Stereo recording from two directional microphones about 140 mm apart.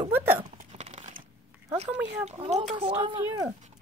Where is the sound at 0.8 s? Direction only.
55° right (ahead or behind).